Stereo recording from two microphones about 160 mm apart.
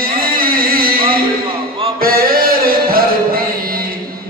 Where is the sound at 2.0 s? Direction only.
65° right (ahead or behind).